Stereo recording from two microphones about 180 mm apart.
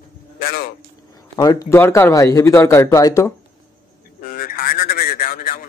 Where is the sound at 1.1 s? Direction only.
20° left (ahead or behind).